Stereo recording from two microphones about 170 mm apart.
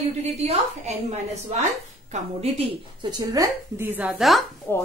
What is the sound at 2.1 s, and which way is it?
Speech, 40° right (ahead or behind).